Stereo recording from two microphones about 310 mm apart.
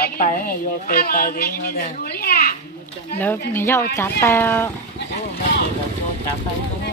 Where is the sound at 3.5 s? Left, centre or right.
Centre.